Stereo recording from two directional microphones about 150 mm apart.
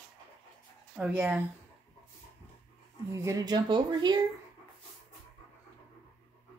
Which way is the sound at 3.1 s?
20° right (ahead or behind).